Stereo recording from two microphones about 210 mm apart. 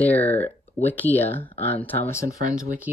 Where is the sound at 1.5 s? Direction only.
25° left (ahead or behind).